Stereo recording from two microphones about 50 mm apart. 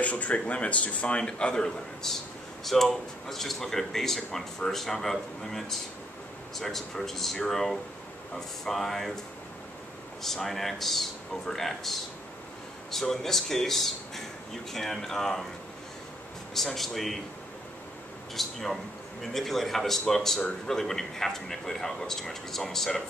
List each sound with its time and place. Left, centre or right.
0.0 s a man's voice: left; by 9.2 s centre
10.2 s speech: centre
16.5 s speech: centre
18.3 s speech: centre